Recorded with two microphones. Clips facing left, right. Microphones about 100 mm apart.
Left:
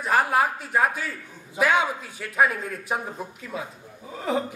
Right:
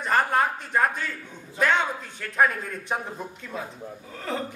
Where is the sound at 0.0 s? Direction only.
5° left (ahead or behind).